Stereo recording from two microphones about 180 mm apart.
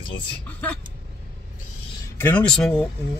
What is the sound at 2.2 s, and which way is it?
Speech, 5° left (ahead or behind).